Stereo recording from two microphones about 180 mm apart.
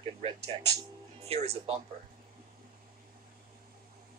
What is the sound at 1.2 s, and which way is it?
Speech, 35° right (ahead or behind).